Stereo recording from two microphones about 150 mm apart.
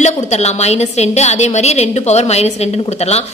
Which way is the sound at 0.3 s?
45° left (ahead or behind).